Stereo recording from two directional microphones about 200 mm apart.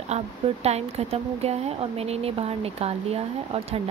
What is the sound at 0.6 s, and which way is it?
A woman's voice, 30° right (ahead or behind).